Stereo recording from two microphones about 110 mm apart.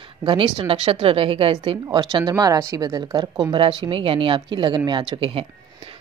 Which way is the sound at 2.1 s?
35° right (ahead or behind).